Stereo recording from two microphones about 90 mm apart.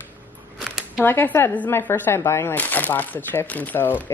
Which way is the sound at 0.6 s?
Centre (ahead or behind).